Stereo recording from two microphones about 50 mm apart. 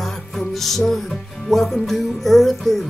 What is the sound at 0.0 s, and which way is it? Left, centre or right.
Music, centre.